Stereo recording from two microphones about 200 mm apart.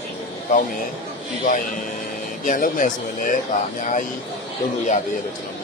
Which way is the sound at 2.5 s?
40° left (ahead or behind).